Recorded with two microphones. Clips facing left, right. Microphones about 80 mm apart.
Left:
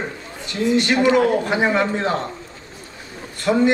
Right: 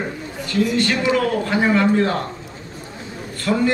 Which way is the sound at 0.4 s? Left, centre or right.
Left.